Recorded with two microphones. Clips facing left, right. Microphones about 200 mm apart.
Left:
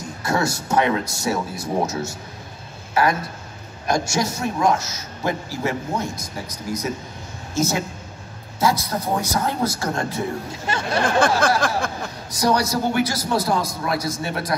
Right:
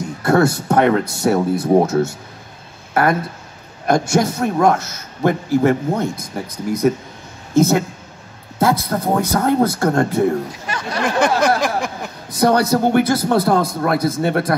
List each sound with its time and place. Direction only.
0.2 s a man's voice: 55° right (ahead or behind)
2.9 s a sound: 55° right (ahead or behind)
3.8 s a man's voice: 55° right (ahead or behind)
7.5 s a man's voice: 55° right (ahead or behind)
10.7 s speech: 25° left (ahead or behind)
11.1 s a sound: 20° right (ahead or behind)
12.3 s a man's voice: 55° right (ahead or behind)